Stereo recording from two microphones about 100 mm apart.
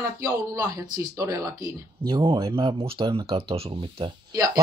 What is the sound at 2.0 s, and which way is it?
Speech, 70° right (ahead or behind).